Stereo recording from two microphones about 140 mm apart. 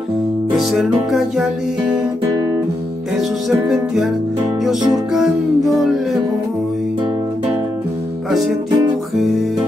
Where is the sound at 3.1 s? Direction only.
Centre (ahead or behind).